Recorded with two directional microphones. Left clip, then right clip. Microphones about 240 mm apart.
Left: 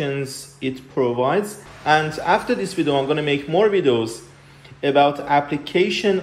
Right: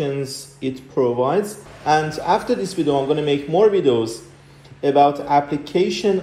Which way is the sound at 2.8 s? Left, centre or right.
Left.